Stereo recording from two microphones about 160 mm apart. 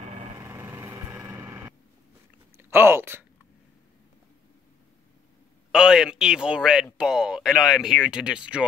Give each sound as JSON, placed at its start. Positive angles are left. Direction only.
{"t": 0.0, "sound": "engine", "side_deg": -45}
{"t": 0.4, "sound": "vehicle", "side_deg": -15}
{"t": 2.5, "sound": "a sound", "side_deg": -15}
{"t": 5.7, "sound": "speech", "side_deg": -5}